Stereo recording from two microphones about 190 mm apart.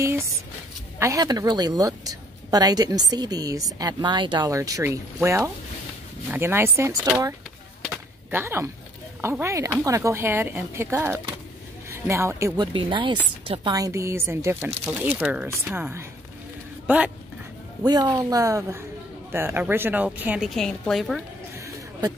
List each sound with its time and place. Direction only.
0.9 s a woman's voice: 15° right (ahead or behind)
7.9 s chop: 10° right (ahead or behind)
9.2 s a woman's voice: 15° right (ahead or behind)
17.8 s a woman's voice: 20° right (ahead or behind); by 21.2 s centre (ahead or behind)
21.5 s a sound: 15° right (ahead or behind)